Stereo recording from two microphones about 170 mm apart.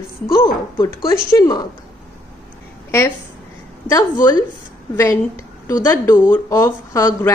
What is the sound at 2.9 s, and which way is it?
Speech, 15° left (ahead or behind).